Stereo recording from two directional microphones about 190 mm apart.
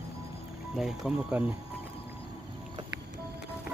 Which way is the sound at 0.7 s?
Centre (ahead or behind).